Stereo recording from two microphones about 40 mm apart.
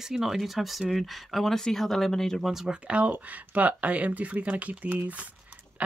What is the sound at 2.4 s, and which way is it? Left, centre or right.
Speech, centre.